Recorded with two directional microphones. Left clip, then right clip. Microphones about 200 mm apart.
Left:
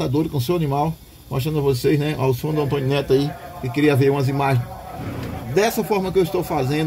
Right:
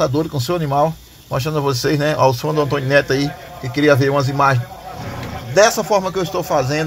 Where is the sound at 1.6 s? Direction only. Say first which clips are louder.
Even; 30° right (ahead or behind).